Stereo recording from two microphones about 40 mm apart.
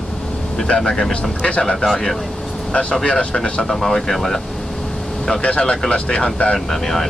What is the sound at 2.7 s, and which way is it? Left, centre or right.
Speech, left.